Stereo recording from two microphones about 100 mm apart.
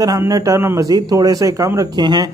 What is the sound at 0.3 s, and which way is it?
Speech, 30° right (ahead or behind).